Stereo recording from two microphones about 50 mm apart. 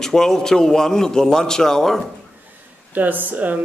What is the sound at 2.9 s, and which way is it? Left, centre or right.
Speech, right.